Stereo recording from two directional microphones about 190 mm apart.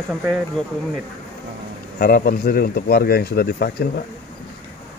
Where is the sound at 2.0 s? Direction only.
50° left (ahead or behind).